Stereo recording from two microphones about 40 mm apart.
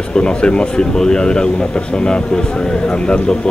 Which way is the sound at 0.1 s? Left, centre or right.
Left.